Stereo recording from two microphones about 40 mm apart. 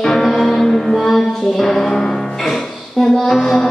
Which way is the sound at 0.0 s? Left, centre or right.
Centre.